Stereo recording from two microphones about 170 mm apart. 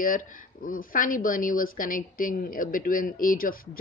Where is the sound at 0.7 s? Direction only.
55° left (ahead or behind).